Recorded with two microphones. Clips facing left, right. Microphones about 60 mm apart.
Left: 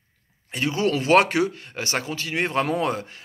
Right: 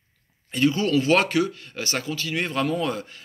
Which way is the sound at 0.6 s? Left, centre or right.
Centre.